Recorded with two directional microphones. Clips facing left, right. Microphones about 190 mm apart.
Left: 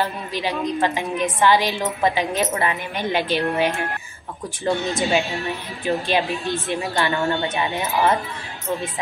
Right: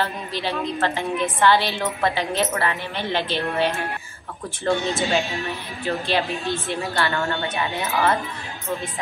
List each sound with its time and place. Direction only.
0.0 s a woman's voice: 15° left (ahead or behind)